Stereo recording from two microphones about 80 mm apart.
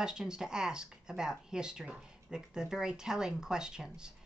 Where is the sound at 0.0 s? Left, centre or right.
Centre.